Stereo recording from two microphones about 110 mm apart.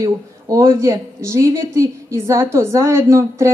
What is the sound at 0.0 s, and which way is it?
Speech, 30° right (ahead or behind).